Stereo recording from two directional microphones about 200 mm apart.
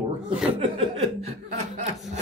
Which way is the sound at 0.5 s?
30° right (ahead or behind).